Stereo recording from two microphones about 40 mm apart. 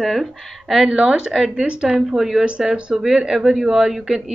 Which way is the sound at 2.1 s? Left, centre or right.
Centre.